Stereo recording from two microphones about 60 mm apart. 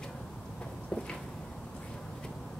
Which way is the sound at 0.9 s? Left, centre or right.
Centre.